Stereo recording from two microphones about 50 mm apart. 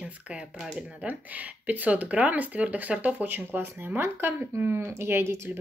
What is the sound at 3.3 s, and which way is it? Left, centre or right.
Speech, right.